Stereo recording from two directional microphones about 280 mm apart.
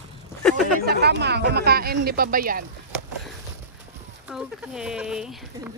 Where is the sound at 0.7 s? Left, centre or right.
Right.